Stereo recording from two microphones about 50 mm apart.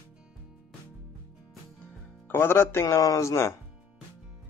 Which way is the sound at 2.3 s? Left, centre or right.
Left.